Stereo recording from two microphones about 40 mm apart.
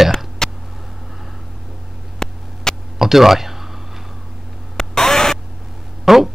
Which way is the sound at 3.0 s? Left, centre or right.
Centre.